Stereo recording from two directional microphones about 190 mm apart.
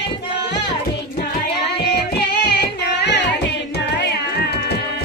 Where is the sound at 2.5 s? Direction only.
65° left (ahead or behind).